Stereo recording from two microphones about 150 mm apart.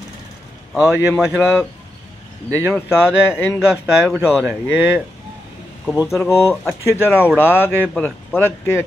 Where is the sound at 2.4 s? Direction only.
20° right (ahead or behind).